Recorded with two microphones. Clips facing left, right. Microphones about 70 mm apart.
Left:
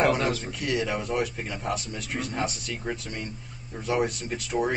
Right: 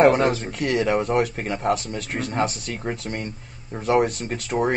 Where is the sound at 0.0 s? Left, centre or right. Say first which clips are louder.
Right 7 dB; right.